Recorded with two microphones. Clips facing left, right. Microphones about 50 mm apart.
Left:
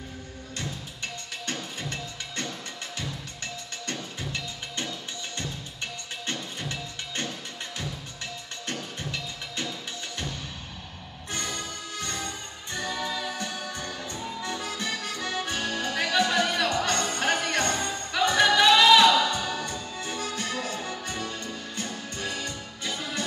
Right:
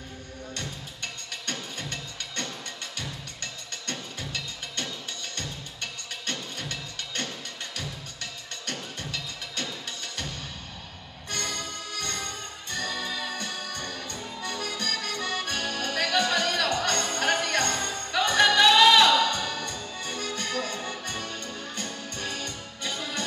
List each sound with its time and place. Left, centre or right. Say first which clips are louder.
0.6 s music: left 3 dB; centre
3.8 s music: left 1 dB; centre
11.3 s music: even; centre